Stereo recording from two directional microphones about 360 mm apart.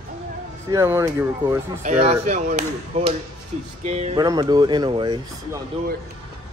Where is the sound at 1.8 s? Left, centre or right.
Centre.